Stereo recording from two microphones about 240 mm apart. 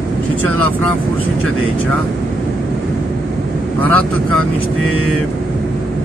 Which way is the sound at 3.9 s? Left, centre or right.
Right.